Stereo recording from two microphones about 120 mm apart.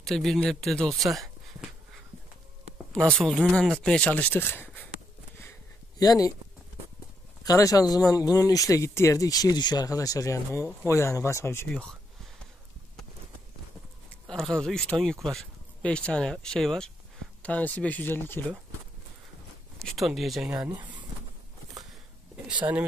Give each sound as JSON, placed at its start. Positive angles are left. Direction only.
{"t": 0.0, "sound": "speech", "side_deg": 5}
{"t": 2.9, "sound": "speech", "side_deg": 5}
{"t": 5.9, "sound": "speech", "side_deg": 30}
{"t": 7.4, "sound": "speech", "side_deg": 30}
{"t": 11.7, "sound": "speech", "side_deg": 5}
{"t": 14.3, "sound": "speech", "side_deg": 5}
{"t": 19.8, "sound": "speech", "side_deg": 0}